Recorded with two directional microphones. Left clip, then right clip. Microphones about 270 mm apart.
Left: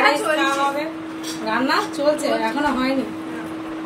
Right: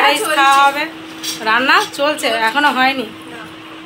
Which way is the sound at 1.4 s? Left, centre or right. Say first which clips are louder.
Right 8 dB; centre.